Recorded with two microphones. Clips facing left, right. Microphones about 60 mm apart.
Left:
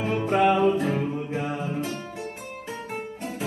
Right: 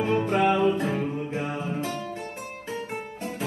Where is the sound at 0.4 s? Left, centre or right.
Left.